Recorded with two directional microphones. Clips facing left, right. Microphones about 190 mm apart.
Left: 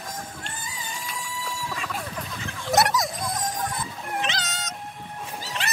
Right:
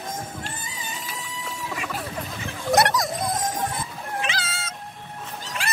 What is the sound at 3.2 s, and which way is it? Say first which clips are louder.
Music: right 3 dB; 25° right (ahead or behind).